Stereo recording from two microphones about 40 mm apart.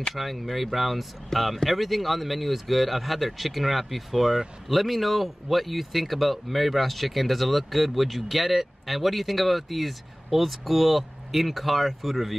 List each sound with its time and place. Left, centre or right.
0.1 s speech: centre